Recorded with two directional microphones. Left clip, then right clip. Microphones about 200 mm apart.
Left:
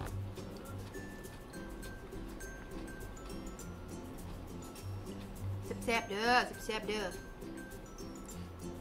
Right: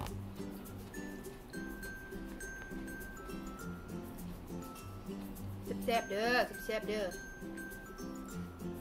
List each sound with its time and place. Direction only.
5.9 s speech: 25° left (ahead or behind)